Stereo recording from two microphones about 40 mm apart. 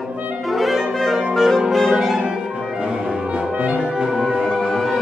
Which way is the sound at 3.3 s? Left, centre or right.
Right.